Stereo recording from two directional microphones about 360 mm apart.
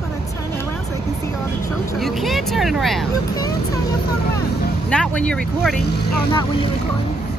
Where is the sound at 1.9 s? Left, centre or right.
Centre.